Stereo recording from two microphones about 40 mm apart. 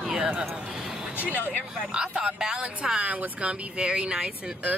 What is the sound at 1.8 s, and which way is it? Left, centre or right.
Speech, centre.